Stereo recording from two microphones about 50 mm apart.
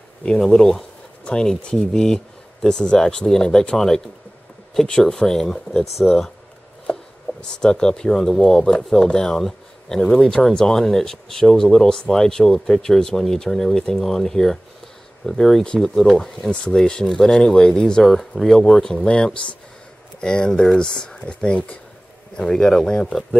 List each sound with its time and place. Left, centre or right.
0.2 s speech: centre
5.0 s speech: centre
7.3 s a sound: left
7.6 s speech: centre
18.0 s speech: centre
18.8 s speech: centre
22.4 s speech: centre